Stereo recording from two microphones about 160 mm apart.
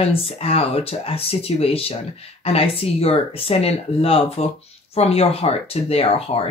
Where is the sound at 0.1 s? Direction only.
35° left (ahead or behind).